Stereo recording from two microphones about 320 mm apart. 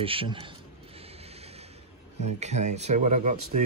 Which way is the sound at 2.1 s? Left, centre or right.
Right.